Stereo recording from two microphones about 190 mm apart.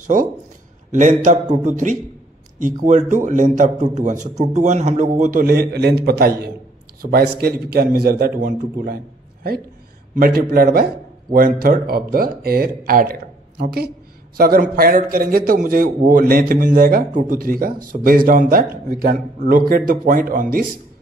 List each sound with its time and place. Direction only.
0.0 s a man's voice: 45° right (ahead or behind)